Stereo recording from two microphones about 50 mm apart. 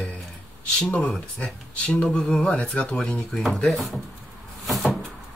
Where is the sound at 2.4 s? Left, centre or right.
Left.